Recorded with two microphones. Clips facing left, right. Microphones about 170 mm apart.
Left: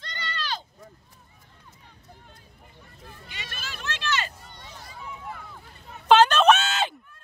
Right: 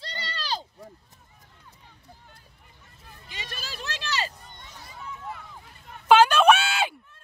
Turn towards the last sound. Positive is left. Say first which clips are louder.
# even
turn(degrees=-10)  # may be behind; listen again after turning